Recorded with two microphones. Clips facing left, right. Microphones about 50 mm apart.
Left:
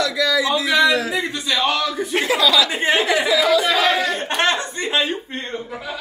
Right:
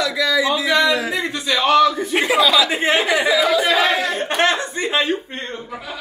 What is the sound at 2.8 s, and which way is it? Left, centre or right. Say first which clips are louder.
Chatter: right 1 dB; centre.